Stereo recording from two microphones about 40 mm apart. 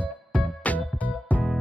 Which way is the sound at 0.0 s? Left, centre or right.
Left.